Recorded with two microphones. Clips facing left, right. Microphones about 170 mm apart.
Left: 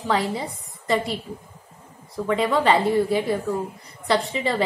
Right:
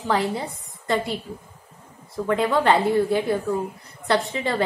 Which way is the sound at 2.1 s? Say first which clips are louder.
Even; centre (ahead or behind).